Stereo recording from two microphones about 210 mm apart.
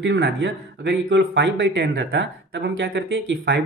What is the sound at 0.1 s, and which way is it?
Speech, 60° right (ahead or behind).